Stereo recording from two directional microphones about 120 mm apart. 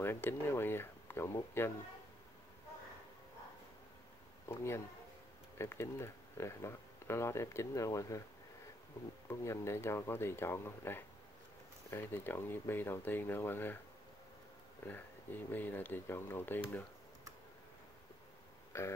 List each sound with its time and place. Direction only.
0.0 s speech: 20° left (ahead or behind)
4.5 s speech: 20° left (ahead or behind)
9.3 s speech: 25° left (ahead or behind)
14.9 s speech: 15° left (ahead or behind)
18.7 s speech: 25° left (ahead or behind)